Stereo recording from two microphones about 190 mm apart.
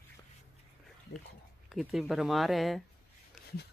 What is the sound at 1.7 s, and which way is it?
Speech, centre (ahead or behind).